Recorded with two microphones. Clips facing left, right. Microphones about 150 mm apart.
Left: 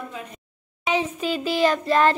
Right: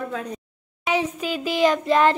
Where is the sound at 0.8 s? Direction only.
10° right (ahead or behind).